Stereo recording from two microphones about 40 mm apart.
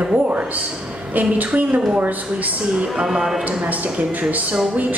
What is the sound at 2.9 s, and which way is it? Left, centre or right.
Speech, centre.